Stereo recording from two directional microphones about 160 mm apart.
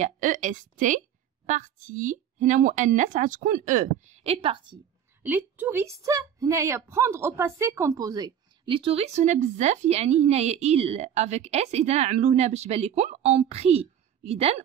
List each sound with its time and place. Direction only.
0.0 s a woman's voice: 55° right (ahead or behind); by 4.7 s 30° right (ahead or behind)
5.2 s a woman's voice: 10° right (ahead or behind); by 14.6 s 40° right (ahead or behind)